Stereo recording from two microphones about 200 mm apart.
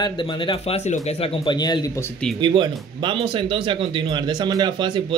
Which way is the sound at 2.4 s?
25° right (ahead or behind).